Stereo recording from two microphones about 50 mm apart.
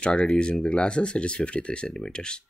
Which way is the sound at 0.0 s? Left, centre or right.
Centre.